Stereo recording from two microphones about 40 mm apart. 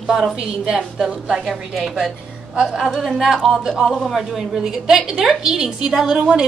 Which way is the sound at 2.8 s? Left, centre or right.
Centre.